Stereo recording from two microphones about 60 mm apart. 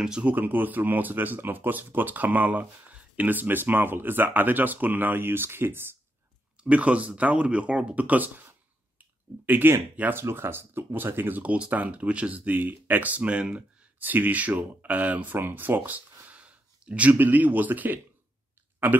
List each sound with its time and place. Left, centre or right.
0.2 s speech: right
6.6 s speech: right